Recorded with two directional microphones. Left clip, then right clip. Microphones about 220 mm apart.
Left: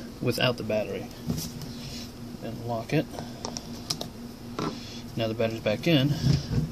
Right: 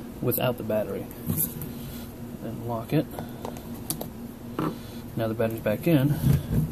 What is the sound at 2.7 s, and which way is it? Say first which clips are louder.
Speech: right 1 dB; centre (ahead or behind).